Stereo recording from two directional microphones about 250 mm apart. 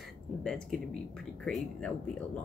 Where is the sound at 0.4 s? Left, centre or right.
Centre.